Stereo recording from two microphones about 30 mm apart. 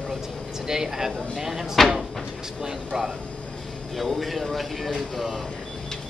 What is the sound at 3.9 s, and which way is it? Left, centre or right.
Speech, centre.